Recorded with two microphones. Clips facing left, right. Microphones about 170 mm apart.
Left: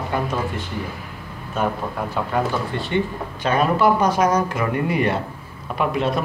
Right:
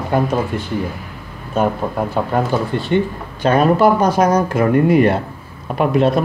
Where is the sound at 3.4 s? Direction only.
40° right (ahead or behind).